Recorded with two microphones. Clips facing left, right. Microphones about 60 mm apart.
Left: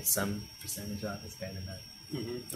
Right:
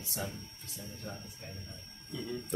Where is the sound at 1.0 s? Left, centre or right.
Left.